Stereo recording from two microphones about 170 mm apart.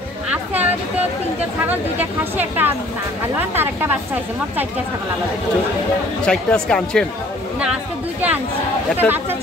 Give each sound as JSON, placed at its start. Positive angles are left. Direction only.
{"t": 0.3, "sound": "music", "side_deg": -10}
{"t": 1.7, "sound": "speech", "side_deg": -10}
{"t": 6.2, "sound": "speech", "side_deg": 5}
{"t": 7.6, "sound": "speech", "side_deg": -5}
{"t": 9.0, "sound": "speech", "side_deg": 5}